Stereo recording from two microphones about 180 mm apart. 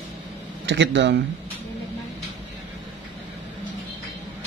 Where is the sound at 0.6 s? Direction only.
80° right.